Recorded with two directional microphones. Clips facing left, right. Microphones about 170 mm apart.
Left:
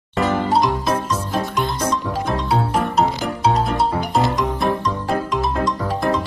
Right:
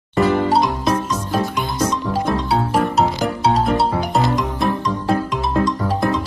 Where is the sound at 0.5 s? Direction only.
Centre (ahead or behind).